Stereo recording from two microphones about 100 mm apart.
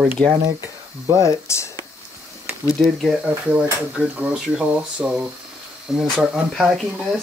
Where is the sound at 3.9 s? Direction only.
10° right (ahead or behind).